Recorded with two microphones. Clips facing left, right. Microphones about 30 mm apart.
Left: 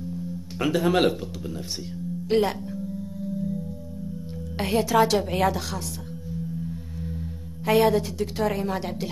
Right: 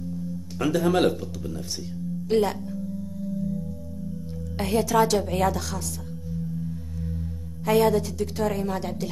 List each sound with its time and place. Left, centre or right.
0.6 s a woman's voice: left
2.2 s speech: left
4.6 s a woman's voice: left
7.6 s a woman's voice: left